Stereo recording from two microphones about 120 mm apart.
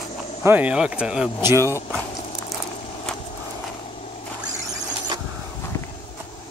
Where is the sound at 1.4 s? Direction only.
20° right (ahead or behind).